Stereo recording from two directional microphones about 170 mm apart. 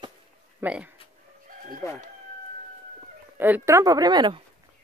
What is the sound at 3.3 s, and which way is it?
Speech, 10° right (ahead or behind).